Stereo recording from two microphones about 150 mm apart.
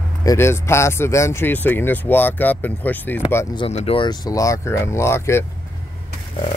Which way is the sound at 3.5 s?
40° left (ahead or behind).